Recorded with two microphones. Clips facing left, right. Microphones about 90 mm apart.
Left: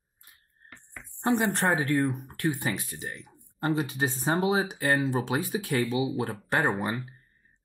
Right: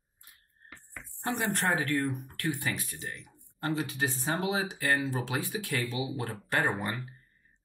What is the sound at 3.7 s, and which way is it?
Speech, 30° left (ahead or behind).